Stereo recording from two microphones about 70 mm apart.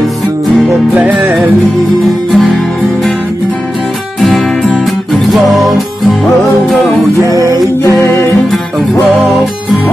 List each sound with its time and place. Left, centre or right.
0.9 s music: right
2.3 s music: centre
7.2 s music: right